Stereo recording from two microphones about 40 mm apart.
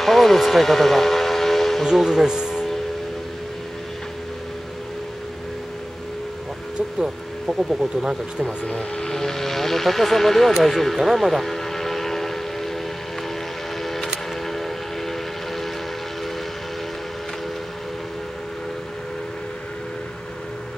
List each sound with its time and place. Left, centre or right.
0.0 s a sound: centre
2.0 s speech: centre
2.2 s speech: centre
7.0 s speech: centre
8.6 s speech: centre
11.0 s vehicle: centre
13.8 s a sound: centre
14.5 s train: centre